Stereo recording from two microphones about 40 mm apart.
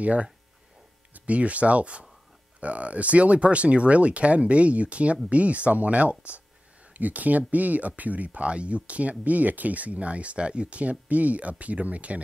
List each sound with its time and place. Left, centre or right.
0.0 s speech: right